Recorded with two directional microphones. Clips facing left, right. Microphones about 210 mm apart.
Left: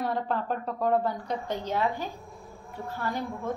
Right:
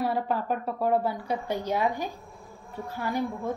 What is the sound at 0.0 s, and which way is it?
A woman's voice, 5° right (ahead or behind).